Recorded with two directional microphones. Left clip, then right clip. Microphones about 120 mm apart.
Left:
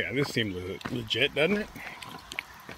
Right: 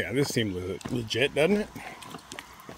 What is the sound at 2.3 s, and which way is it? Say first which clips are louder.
Water: left 7 dB; 40° right (ahead or behind).